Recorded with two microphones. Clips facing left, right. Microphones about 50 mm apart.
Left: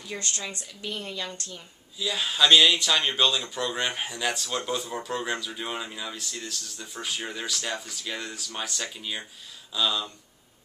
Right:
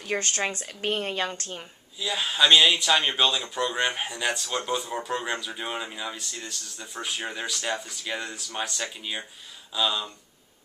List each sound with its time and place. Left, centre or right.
0.0 s a woman's voice: right
2.0 s speech: centre